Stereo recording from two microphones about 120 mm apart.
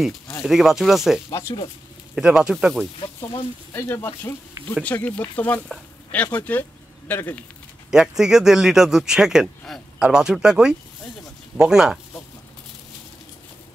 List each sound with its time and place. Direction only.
0.4 s speech: centre (ahead or behind)
3.7 s speech: 20° left (ahead or behind)
7.9 s speech: 5° right (ahead or behind)